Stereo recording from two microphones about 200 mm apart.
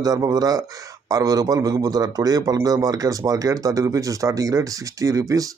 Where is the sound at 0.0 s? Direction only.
20° right (ahead or behind).